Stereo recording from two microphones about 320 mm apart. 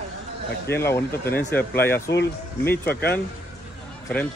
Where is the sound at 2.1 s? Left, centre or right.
Left.